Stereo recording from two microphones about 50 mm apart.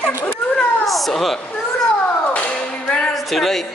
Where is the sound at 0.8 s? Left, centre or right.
Centre.